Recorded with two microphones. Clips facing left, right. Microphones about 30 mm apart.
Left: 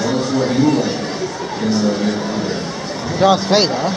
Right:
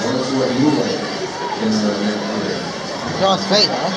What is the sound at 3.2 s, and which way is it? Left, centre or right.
Speech, centre.